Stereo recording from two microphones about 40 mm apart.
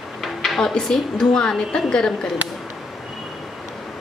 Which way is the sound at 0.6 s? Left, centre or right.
Centre.